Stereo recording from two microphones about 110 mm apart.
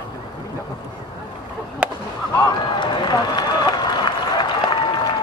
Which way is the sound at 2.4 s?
40° left (ahead or behind).